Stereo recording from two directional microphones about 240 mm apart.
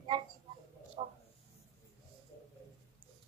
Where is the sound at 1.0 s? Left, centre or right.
Right.